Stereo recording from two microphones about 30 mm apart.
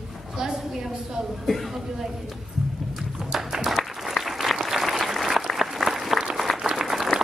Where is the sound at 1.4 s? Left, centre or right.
Centre.